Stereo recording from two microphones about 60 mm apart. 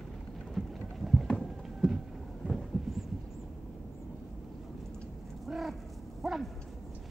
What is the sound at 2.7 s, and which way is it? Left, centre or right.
Thunder, centre.